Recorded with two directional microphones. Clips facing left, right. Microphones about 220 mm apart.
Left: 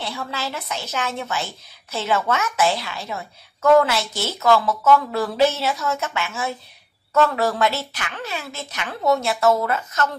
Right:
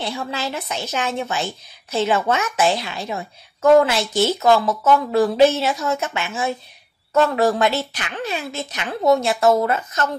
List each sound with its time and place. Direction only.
0.3 s a woman's voice: 20° right (ahead or behind)